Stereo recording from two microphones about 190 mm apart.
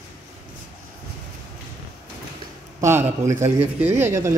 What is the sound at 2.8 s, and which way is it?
A man's voice, 15° right (ahead or behind).